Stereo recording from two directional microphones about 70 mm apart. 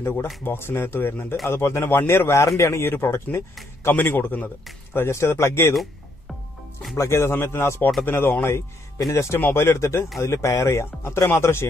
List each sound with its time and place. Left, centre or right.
0.0 s a man's voice: left
7.0 s a man's voice: left